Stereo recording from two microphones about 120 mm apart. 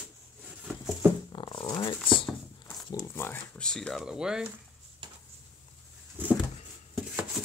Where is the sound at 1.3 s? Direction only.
40° left (ahead or behind).